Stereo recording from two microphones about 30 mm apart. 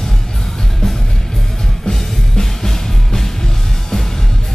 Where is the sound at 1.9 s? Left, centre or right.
Centre.